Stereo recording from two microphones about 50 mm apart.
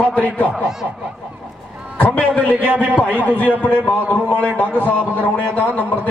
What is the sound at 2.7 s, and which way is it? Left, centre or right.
Speech, right.